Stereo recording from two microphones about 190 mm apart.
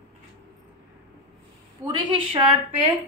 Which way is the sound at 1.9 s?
25° right (ahead or behind).